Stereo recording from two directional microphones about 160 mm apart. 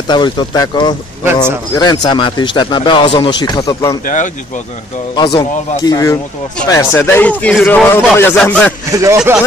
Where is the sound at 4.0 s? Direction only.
55° left (ahead or behind).